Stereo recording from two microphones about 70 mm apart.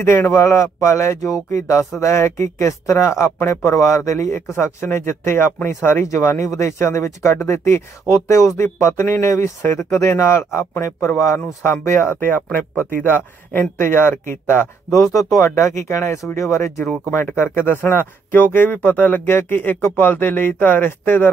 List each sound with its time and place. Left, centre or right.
0.0 s speech: left
14.9 s speech: centre
15.1 s speech: left
17.1 s speech: left